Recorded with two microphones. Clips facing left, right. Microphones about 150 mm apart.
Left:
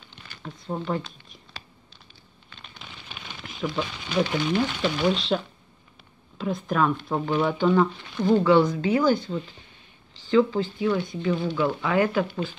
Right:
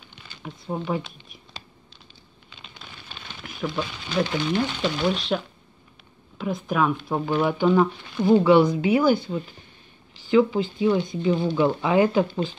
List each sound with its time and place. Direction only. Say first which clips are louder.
0.4 s speech: right 1 dB; 10° right (ahead or behind)
3.3 s speech: even; centre (ahead or behind)
4.2 s speech: even; 10° left (ahead or behind)
4.6 s speech: even; 5° right (ahead or behind); by 12.5 s 20° right (ahead or behind)